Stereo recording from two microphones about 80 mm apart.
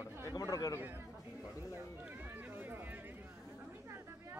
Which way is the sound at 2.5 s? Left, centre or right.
Right.